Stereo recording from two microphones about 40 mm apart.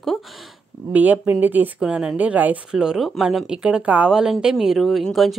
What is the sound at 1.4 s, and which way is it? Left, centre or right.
Speech, right.